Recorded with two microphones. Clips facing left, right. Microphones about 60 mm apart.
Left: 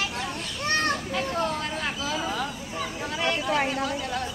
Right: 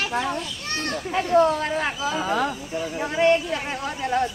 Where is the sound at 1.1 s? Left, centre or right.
Right.